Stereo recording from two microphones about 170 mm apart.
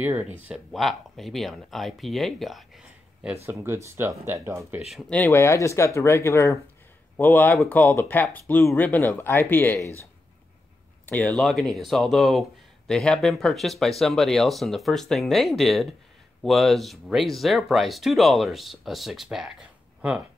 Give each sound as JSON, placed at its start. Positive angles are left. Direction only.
{"t": 0.0, "sound": "speech", "side_deg": -10}
{"t": 3.4, "sound": "speech", "side_deg": -15}
{"t": 5.2, "sound": "speech", "side_deg": 15}
{"t": 11.1, "sound": "speech", "side_deg": 5}